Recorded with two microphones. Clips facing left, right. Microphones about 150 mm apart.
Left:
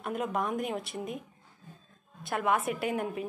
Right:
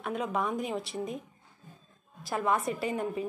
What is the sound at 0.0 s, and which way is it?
Speech, centre (ahead or behind).